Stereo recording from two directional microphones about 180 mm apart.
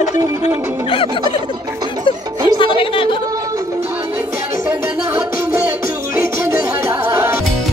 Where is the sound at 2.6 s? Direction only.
30° left (ahead or behind).